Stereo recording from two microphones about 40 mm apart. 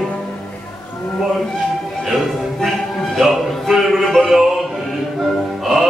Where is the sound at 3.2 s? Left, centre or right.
Centre.